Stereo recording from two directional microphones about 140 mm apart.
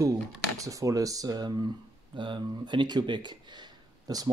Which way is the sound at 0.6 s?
25° right (ahead or behind).